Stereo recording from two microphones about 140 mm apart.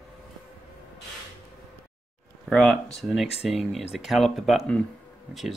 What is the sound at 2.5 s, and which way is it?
Speech, centre (ahead or behind).